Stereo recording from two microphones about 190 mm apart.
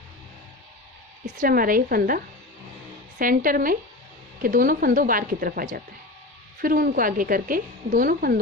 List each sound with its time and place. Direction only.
1.2 s a woman's voice: 45° right (ahead or behind)